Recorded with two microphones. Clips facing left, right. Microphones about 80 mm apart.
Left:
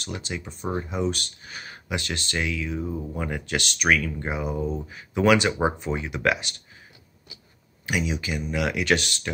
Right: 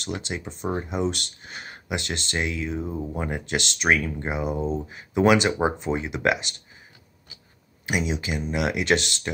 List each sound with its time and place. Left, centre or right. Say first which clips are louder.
0.0 s speech: right 2 dB; right
7.9 s speech: right 1 dB; right